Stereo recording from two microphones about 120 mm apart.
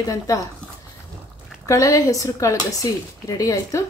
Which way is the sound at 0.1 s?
25° left (ahead or behind).